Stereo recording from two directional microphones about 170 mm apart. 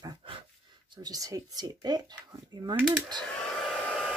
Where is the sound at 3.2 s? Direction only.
5° left (ahead or behind).